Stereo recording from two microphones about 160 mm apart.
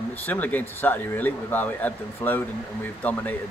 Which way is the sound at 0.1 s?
10° left (ahead or behind).